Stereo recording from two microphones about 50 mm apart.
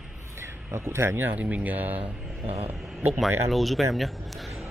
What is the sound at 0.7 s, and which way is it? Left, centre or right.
Speech, right.